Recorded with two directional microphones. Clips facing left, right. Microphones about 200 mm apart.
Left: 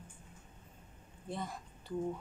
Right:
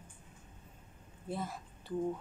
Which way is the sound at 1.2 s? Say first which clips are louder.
Right 2 dB; 5° right (ahead or behind).